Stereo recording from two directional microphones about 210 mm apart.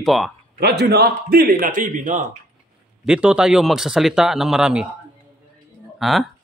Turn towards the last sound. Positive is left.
turn(degrees=0)  # may be behind; listen again after turning